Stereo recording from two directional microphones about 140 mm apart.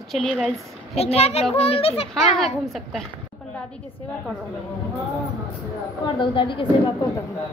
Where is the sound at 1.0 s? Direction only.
50° left (ahead or behind).